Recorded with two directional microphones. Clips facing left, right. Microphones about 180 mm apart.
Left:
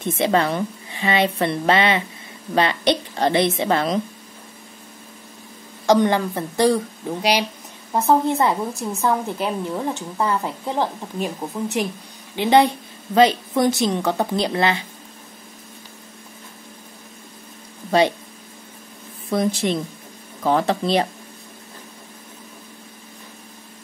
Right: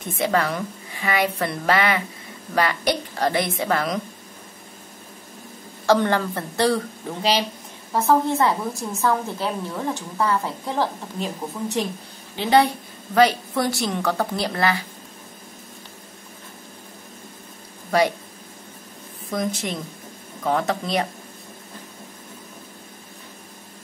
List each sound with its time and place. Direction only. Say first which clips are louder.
0.0 s a woman's voice: left 3 dB; 25° left (ahead or behind)
5.9 s a woman's voice: left 2 dB; 15° left (ahead or behind)
19.3 s speech: left 5 dB; 30° left (ahead or behind)